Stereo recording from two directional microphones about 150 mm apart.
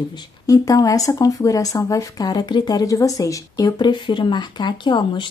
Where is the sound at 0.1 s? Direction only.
25° left (ahead or behind).